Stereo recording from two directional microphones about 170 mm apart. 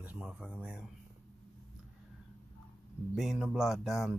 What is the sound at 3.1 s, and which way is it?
Speech, centre (ahead or behind).